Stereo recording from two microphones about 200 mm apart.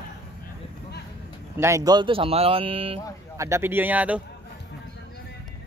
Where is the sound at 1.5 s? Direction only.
15° right (ahead or behind).